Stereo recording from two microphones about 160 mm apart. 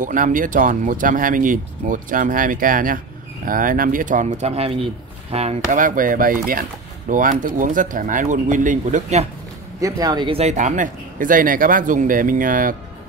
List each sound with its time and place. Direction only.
0.0 s speech: 55° right (ahead or behind)
9.8 s speech: 20° right (ahead or behind); by 12.7 s 60° right (ahead or behind)